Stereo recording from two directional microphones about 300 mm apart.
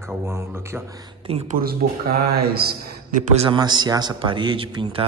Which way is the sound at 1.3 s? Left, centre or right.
Right.